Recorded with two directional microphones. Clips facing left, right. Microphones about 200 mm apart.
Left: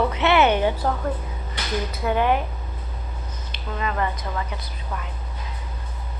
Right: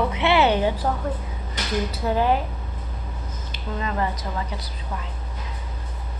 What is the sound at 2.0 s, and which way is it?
Speech, 35° right (ahead or behind).